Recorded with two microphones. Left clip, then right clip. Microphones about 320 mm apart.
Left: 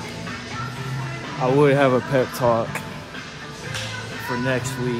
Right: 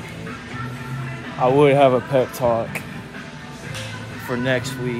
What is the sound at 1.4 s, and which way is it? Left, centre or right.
Speech, centre.